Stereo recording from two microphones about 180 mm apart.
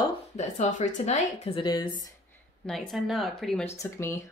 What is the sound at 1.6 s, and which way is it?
Speech, 25° left (ahead or behind).